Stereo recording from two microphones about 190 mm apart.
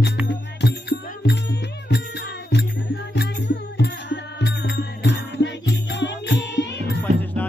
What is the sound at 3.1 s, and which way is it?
Music, 60° left (ahead or behind).